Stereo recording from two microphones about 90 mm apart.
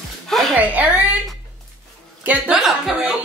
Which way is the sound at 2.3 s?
5° right (ahead or behind).